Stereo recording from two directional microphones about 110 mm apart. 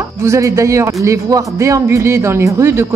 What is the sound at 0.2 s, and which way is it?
A woman's voice, 25° right (ahead or behind).